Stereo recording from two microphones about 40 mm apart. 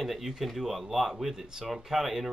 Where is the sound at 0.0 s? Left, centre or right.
Centre.